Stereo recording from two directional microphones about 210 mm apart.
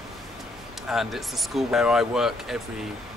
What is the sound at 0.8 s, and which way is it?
Speech, centre (ahead or behind).